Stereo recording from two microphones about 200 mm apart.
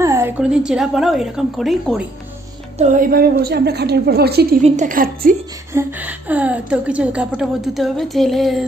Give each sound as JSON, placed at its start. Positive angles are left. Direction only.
{"t": 0.0, "sound": "a woman's voice", "side_deg": -15}
{"t": 2.8, "sound": "a woman's voice", "side_deg": -40}
{"t": 4.6, "sound": "a woman's voice", "side_deg": -35}
{"t": 5.7, "sound": "a woman's voice", "side_deg": -10}